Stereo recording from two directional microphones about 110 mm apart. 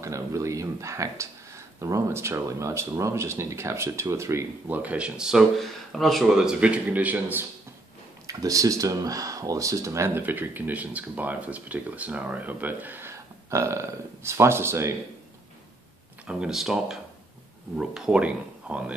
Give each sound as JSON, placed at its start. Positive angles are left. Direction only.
{"t": 0.0, "sound": "speech", "side_deg": -25}
{"t": 8.3, "sound": "speech", "side_deg": -30}
{"t": 16.3, "sound": "speech", "side_deg": -5}